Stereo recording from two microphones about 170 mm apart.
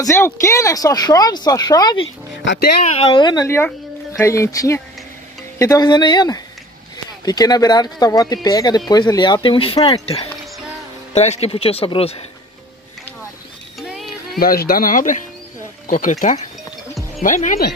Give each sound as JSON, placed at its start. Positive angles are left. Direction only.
{"t": 0.0, "sound": "speech", "side_deg": 15}
{"t": 2.4, "sound": "speech", "side_deg": 90}
{"t": 2.8, "sound": "speech", "side_deg": 40}
{"t": 11.1, "sound": "speech", "side_deg": 40}
{"t": 13.7, "sound": "a sound", "side_deg": 0}
{"t": 14.4, "sound": "speech", "side_deg": 60}